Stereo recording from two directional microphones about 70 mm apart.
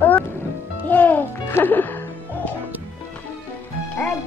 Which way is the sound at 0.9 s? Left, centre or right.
Left.